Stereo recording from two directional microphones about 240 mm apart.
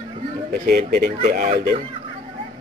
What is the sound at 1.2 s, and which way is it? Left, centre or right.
Speech, right.